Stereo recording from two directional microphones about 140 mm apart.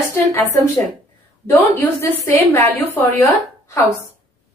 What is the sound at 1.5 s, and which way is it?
A woman's voice, 15° left (ahead or behind).